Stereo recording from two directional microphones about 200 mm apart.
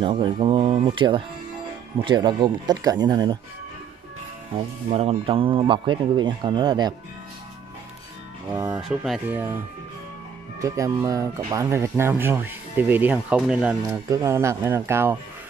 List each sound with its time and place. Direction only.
0.0 s speech: 25° right (ahead or behind)
4.9 s speech: 30° right (ahead or behind)
8.5 s speech: 10° right (ahead or behind)
8.8 s speech: centre (ahead or behind)
10.6 s speech: 15° right (ahead or behind)